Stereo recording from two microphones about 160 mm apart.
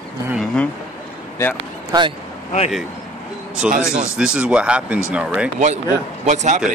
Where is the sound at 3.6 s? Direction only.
5° right (ahead or behind).